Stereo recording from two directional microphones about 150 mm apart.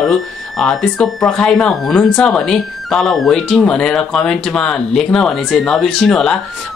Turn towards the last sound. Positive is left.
turn(degrees=0)  # may be behind; listen again after turning